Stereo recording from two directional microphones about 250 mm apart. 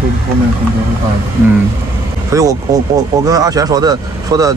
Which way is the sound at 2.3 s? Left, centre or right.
Centre.